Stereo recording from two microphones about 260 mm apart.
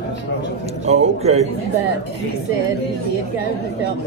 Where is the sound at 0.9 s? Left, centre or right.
Right.